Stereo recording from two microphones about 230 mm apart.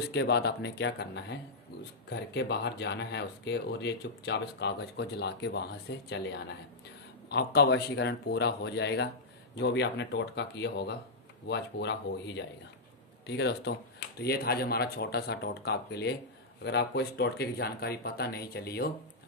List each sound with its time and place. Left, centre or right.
0.1 s speech: left